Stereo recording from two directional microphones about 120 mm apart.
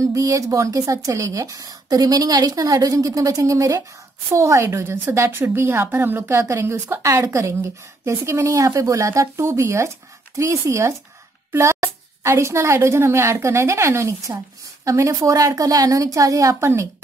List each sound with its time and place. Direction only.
0.0 s a woman's voice: 30° right (ahead or behind)